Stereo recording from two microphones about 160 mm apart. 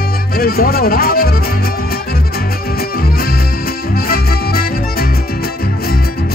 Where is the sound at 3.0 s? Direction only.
70° left (ahead or behind).